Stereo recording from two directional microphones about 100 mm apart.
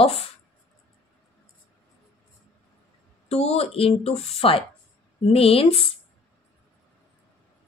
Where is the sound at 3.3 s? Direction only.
90° left.